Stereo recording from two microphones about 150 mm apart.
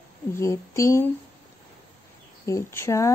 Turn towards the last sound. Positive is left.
turn(degrees=15)  # may be behind; listen again after turning